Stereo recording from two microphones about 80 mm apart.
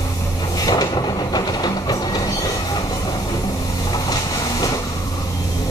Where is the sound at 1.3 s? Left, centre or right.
Left.